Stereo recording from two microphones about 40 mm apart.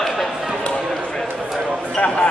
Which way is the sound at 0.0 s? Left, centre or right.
Centre.